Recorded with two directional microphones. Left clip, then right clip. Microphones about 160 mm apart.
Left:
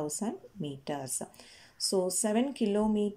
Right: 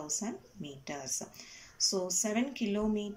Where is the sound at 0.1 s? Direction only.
25° left (ahead or behind).